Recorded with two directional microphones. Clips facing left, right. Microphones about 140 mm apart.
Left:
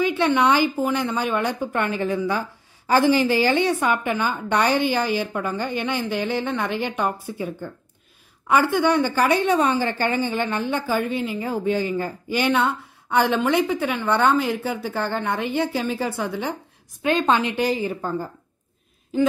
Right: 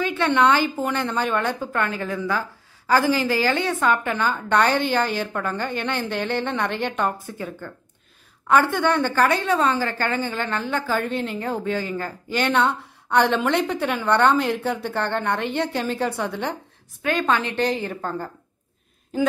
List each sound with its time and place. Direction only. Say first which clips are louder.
0.0 s a woman's voice: even; 15° left (ahead or behind)
11.1 s a woman's voice: even; 5° left (ahead or behind)
17.0 s a woman's voice: left 2 dB; 20° left (ahead or behind)